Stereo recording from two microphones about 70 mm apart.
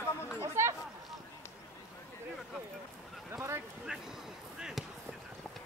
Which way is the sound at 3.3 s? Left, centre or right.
Right.